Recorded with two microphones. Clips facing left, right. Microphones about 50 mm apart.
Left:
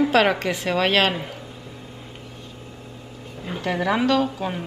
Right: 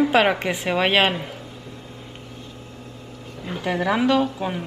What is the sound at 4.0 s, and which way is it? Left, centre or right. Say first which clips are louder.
Speech: right 1 dB; centre.